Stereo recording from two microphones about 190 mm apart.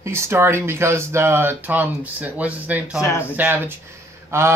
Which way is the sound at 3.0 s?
15° left (ahead or behind).